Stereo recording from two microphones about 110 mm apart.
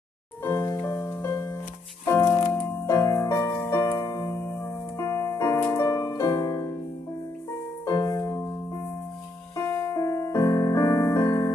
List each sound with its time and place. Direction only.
0.4 s music: 25° left (ahead or behind)
7.8 s music: 30° left (ahead or behind)